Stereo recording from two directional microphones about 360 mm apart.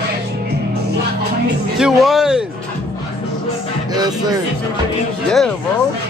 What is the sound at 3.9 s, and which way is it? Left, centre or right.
Speech, centre.